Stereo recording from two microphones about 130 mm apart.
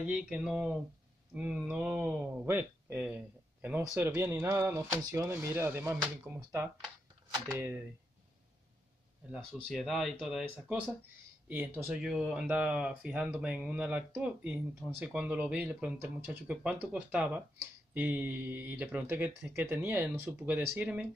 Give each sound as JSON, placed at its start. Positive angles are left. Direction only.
{"t": 0.0, "sound": "speech", "side_deg": -10}
{"t": 5.3, "sound": "speech", "side_deg": -15}
{"t": 9.5, "sound": "speech", "side_deg": 5}
{"t": 11.4, "sound": "speech", "side_deg": -10}